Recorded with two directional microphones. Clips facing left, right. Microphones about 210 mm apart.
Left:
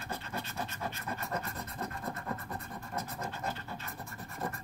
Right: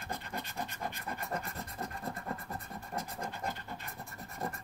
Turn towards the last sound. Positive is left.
turn(degrees=-15)  # may be behind; listen again after turning